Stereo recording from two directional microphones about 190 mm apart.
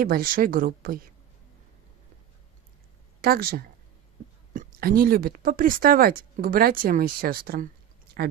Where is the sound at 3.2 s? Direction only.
55° right (ahead or behind).